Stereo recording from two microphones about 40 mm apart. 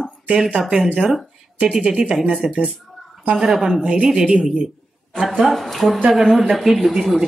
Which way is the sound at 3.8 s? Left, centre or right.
Right.